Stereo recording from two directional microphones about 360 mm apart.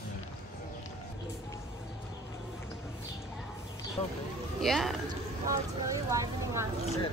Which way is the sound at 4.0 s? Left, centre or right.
Centre.